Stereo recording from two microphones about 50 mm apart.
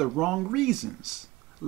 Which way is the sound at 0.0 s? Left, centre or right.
Centre.